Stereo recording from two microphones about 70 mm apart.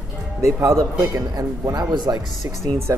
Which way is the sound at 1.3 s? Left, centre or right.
Right.